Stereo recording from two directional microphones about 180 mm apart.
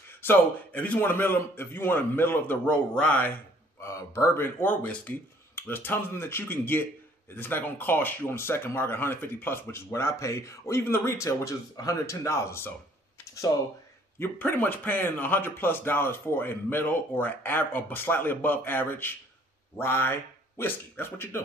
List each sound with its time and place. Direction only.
0.2 s a man's voice: 10° left (ahead or behind)
13.2 s computer keyboard: 20° left (ahead or behind)
14.2 s a man's voice: 10° left (ahead or behind)